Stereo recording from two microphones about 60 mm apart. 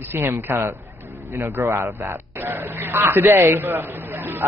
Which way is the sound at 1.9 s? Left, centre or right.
Right.